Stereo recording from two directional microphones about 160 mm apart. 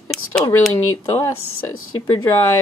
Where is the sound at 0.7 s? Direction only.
20° left (ahead or behind).